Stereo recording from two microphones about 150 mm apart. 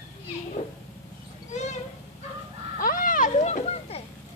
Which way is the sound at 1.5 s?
50° left (ahead or behind).